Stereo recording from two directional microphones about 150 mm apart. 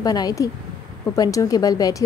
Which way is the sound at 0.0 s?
25° left (ahead or behind).